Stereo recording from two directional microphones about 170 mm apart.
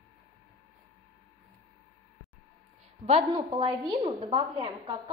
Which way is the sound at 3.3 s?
25° right (ahead or behind).